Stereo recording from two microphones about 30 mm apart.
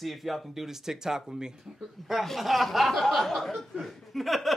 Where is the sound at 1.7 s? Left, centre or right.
Centre.